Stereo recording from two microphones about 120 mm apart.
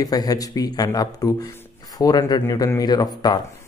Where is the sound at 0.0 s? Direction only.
30° left (ahead or behind).